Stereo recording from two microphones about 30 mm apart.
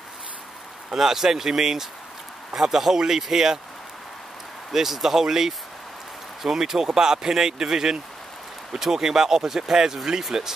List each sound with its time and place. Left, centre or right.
0.9 s speech: centre
4.7 s speech: centre